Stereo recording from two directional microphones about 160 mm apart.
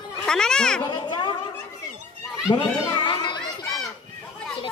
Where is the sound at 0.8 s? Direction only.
30° left (ahead or behind).